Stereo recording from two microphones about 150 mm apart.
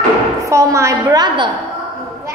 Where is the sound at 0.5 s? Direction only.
20° right (ahead or behind).